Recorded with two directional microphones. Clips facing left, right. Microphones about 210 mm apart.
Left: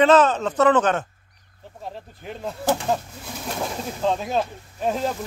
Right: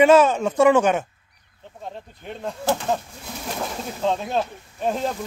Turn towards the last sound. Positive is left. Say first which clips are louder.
# even
turn(degrees=0)  # may be behind; listen again after turning